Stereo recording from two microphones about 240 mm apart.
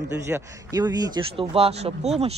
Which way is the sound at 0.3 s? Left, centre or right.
Centre.